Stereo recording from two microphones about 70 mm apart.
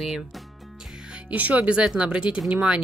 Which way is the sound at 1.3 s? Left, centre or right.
Right.